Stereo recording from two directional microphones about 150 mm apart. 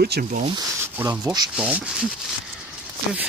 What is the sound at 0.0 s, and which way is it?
Speech, 80° right.